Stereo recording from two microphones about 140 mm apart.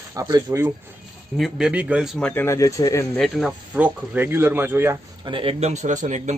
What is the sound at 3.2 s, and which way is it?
Speech, centre (ahead or behind).